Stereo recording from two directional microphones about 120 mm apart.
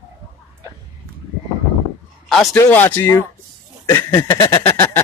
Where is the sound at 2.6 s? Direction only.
20° left (ahead or behind).